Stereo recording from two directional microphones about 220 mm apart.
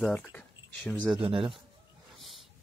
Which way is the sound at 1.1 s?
25° right (ahead or behind).